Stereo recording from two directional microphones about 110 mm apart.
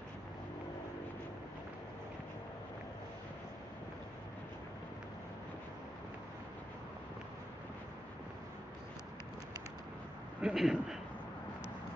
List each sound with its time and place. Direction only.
10.4 s a man's voice: 5° right (ahead or behind)